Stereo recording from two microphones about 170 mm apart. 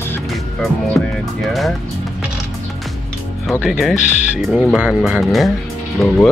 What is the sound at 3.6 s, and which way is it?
Speech, centre (ahead or behind).